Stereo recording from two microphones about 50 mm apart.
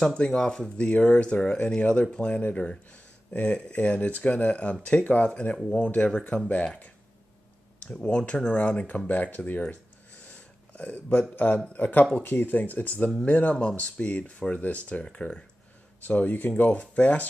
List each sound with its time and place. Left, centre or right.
0.0 s speech: centre
7.9 s speech: centre; by 9.6 s left
10.2 s a sound: left
11.7 s speech: left
16.1 s speech: left
16.8 s speech: left